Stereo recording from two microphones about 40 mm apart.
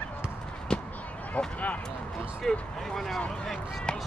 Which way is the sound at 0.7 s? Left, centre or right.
Left.